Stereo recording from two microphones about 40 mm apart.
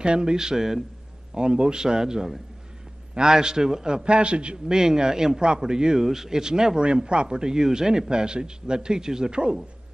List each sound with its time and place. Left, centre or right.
0.0 s a man's voice: right
4.7 s a man's voice: centre